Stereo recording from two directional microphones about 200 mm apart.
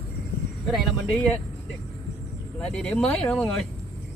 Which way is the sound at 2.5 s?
5° left (ahead or behind).